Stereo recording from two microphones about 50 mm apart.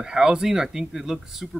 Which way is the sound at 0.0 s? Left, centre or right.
Centre.